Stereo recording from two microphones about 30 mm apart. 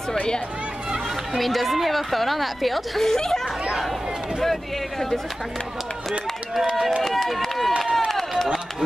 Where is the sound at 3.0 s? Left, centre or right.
Centre.